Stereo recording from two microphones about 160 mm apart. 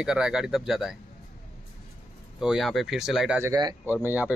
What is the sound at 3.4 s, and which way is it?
Speech, 25° right (ahead or behind).